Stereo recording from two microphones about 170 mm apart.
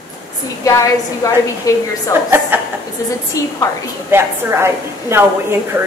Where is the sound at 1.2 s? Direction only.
20° left (ahead or behind).